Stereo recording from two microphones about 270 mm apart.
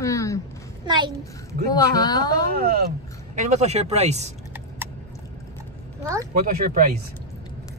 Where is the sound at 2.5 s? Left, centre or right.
Right.